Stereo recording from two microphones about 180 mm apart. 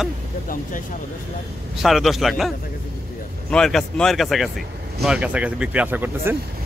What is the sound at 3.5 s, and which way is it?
Speech, 5° left (ahead or behind).